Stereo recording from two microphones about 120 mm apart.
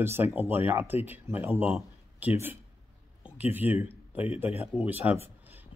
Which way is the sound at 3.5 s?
15° right (ahead or behind).